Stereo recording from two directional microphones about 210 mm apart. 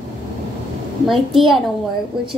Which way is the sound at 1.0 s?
Centre (ahead or behind).